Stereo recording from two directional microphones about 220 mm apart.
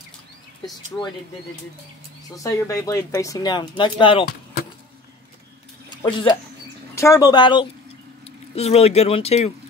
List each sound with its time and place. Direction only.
0.9 s speech: 5° left (ahead or behind)
2.3 s speech: 15° left (ahead or behind)
5.9 s a sound: 20° left (ahead or behind)
7.0 s speech: 15° left (ahead or behind)